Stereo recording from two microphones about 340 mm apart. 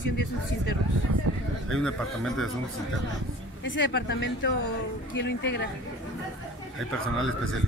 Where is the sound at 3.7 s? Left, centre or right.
Left.